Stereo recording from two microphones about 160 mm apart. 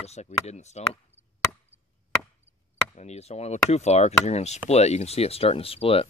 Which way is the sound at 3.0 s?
45° left (ahead or behind).